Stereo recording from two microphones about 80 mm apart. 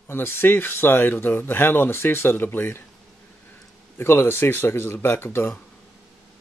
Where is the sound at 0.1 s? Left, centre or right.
Left.